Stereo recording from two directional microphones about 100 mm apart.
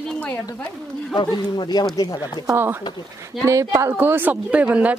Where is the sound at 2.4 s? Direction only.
25° right (ahead or behind).